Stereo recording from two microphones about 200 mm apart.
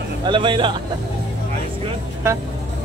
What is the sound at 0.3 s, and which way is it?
Speech, 25° right (ahead or behind).